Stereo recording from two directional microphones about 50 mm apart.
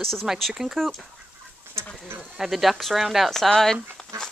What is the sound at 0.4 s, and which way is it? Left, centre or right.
Speech, centre.